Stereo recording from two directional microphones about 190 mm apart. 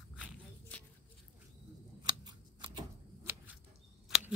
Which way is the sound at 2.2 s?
25° right (ahead or behind).